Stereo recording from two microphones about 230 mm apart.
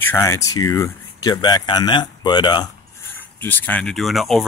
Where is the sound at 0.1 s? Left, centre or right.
Centre.